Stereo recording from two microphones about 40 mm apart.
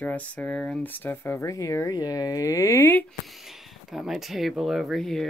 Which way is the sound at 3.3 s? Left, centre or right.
Centre.